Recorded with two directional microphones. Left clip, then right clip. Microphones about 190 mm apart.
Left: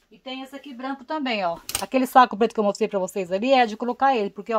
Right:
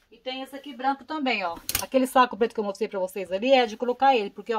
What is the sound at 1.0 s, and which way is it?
Speech, 60° left (ahead or behind).